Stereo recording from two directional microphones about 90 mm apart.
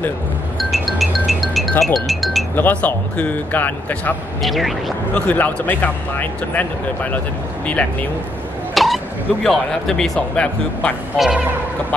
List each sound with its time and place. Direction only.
0.6 s music: centre (ahead or behind)
2.0 s speech: centre (ahead or behind)
2.5 s speech: 20° left (ahead or behind)
4.4 s speech: centre (ahead or behind)
5.1 s speech: 15° left (ahead or behind)
8.7 s speech: centre (ahead or behind)
11.1 s speech: 5° right (ahead or behind)